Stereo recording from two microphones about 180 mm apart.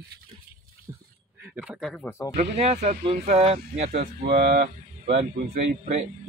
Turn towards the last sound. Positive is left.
turn(degrees=-40)  # may be behind; listen again after turning